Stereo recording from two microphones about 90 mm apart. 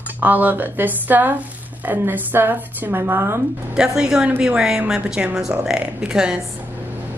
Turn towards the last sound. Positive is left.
turn(degrees=-10)  # may be behind; listen again after turning